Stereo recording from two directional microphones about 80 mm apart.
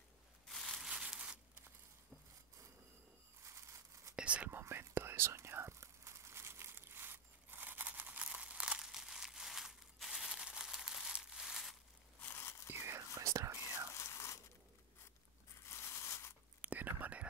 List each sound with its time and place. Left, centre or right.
0.5 s a sound: centre
3.4 s a sound: right
4.1 s whispering: centre
4.5 s whispering: right; by 11.7 s centre
12.2 s biting: left
12.8 s whispering: right
13.9 s crumpling: left
15.6 s a sound: left
16.6 s whispering: centre